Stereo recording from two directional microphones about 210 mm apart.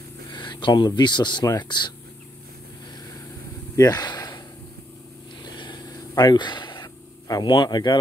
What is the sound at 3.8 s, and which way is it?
Speech, 20° left (ahead or behind).